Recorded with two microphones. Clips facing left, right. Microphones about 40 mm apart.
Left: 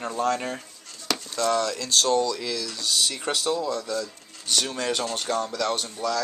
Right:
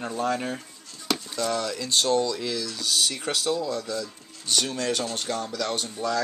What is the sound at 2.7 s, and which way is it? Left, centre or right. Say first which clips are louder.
Speech: left 1 dB; centre.